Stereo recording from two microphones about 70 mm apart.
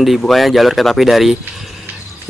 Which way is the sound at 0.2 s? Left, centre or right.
Centre.